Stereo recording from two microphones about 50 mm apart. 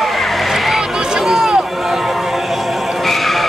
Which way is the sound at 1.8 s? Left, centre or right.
Centre.